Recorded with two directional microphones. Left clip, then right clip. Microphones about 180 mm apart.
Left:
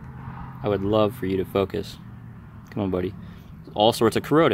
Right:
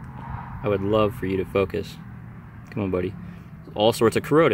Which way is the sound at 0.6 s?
15° left (ahead or behind).